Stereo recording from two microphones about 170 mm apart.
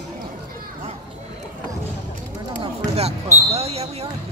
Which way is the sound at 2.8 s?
40° right (ahead or behind).